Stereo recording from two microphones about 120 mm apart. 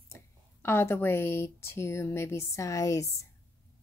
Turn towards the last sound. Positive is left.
turn(degrees=25)  # may be behind; listen again after turning